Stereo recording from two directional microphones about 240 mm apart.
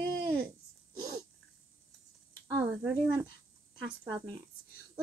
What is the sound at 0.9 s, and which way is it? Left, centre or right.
Sneeze, centre.